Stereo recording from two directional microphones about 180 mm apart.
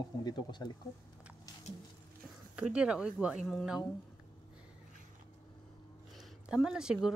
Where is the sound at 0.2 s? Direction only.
25° left (ahead or behind).